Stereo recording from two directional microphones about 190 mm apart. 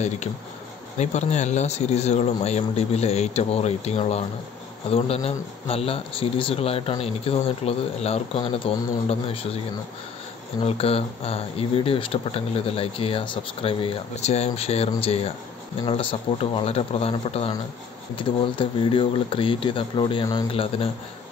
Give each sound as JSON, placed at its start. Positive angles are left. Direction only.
{"t": 0.9, "sound": "speech", "side_deg": 35}
{"t": 10.6, "sound": "speech", "side_deg": 30}